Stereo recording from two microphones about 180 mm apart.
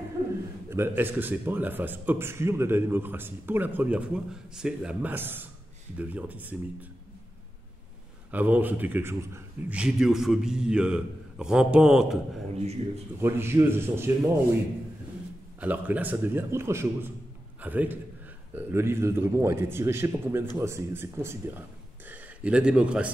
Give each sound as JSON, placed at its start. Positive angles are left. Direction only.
{"t": 0.7, "sound": "speech", "side_deg": -10}
{"t": 8.3, "sound": "a man's voice", "side_deg": -10}
{"t": 12.5, "sound": "speech", "side_deg": -35}
{"t": 13.2, "sound": "speech", "side_deg": -15}
{"t": 15.6, "sound": "a man's voice", "side_deg": -10}